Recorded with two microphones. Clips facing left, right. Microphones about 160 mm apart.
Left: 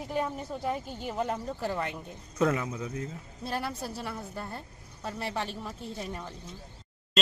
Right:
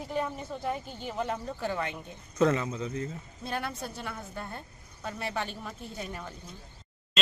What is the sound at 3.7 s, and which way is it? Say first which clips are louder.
Speech: left 2 dB; 35° left (ahead or behind).